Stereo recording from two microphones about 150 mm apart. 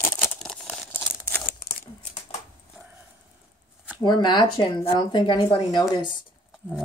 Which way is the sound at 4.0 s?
30° left (ahead or behind).